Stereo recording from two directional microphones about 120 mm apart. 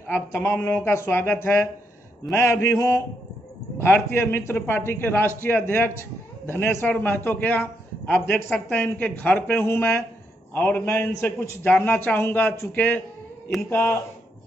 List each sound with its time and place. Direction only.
0.0 s a man's voice: 20° left (ahead or behind)
0.6 s a man's voice: 10° left (ahead or behind)